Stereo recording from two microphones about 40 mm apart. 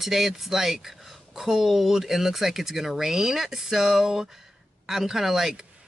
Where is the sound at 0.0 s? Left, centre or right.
Centre.